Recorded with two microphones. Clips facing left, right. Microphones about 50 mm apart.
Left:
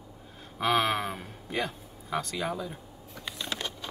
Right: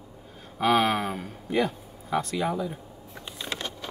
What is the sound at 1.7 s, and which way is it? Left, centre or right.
Speech, centre.